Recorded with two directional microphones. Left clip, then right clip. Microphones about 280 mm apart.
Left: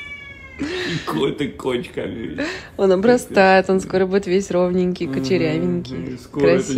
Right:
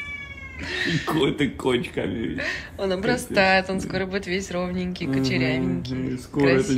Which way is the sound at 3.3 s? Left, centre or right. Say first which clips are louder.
Left 3 dB; centre.